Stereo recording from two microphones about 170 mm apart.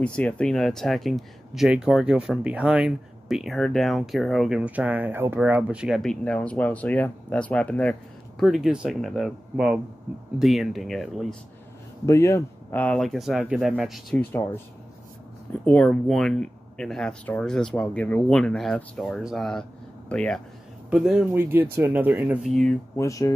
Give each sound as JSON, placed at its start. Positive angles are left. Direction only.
{"t": 0.0, "sound": "speech", "side_deg": 5}
{"t": 12.1, "sound": "speech", "side_deg": 15}
{"t": 14.1, "sound": "speech", "side_deg": 15}
{"t": 15.6, "sound": "speech", "side_deg": 5}
{"t": 22.5, "sound": "speech", "side_deg": 0}
{"t": 22.9, "sound": "speech", "side_deg": 20}